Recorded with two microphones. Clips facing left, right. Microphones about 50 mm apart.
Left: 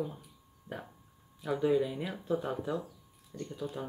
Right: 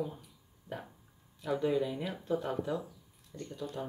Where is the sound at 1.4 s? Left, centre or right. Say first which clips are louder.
Left 2 dB; centre.